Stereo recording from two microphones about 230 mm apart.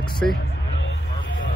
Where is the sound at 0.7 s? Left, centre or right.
Left.